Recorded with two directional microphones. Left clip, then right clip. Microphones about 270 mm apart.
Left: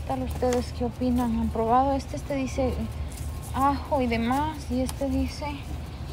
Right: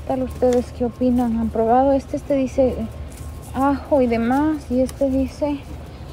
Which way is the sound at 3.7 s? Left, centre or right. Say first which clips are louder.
Right 8 dB; left.